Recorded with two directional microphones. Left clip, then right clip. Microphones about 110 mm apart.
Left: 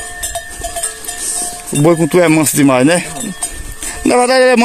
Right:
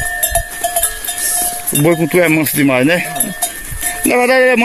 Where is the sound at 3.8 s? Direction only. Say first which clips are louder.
Left 1 dB; 35° left (ahead or behind).